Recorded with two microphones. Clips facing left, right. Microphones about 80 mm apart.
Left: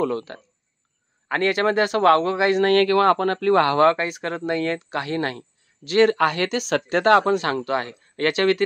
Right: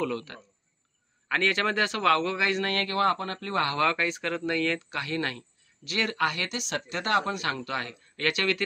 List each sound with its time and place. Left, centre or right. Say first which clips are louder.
1.6 s speech: left 7 dB; left
2.0 s speech: left 8 dB; left
2.3 s speech: left 8 dB; left
2.6 s speech: left 12 dB; left
3.8 s speech: left 8 dB; left
7.4 s speech: left 8 dB; left
8.3 s speech: left 8 dB; left